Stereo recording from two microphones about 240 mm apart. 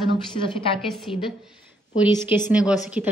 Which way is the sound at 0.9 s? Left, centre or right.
Centre.